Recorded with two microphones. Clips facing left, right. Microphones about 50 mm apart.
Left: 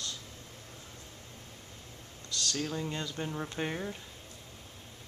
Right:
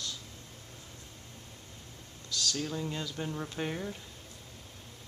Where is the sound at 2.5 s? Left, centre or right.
Centre.